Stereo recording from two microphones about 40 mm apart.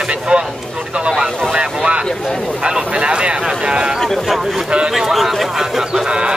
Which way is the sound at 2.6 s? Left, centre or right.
Right.